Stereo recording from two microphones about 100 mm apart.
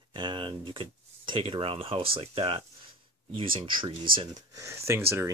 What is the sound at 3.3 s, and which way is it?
Speech, 60° right (ahead or behind).